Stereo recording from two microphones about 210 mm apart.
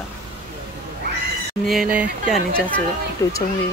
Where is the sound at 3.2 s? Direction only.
15° left (ahead or behind).